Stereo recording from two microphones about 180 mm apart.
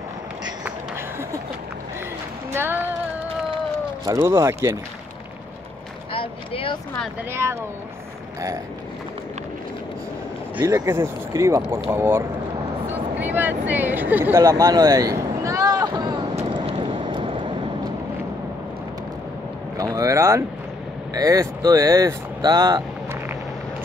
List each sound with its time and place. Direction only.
2.5 s a sound: 10° right (ahead or behind)
4.0 s speech: 15° right (ahead or behind)
6.1 s a sound: 30° left (ahead or behind)
10.6 s speech: 15° right (ahead or behind)
16.3 s vehicle: 30° right (ahead or behind)
19.8 s speech: 20° right (ahead or behind)